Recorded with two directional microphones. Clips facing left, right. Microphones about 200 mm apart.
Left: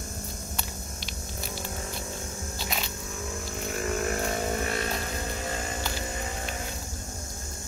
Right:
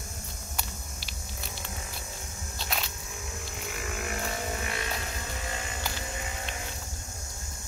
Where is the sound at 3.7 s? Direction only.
40° left (ahead or behind).